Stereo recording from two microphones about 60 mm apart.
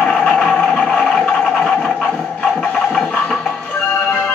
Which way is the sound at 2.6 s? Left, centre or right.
Centre.